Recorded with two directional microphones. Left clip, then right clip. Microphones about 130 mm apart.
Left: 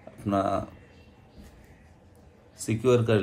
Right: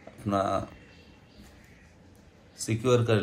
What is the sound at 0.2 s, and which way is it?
Speech, 25° left (ahead or behind).